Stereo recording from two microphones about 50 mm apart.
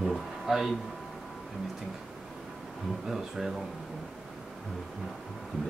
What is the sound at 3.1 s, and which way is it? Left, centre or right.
Speech, centre.